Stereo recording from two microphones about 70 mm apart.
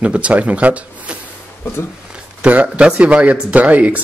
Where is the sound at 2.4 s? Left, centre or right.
Centre.